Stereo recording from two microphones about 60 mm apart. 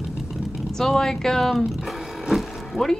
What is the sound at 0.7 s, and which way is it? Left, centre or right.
Speech, centre.